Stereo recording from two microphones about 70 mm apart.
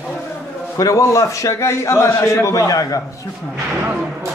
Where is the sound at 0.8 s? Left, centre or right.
Left.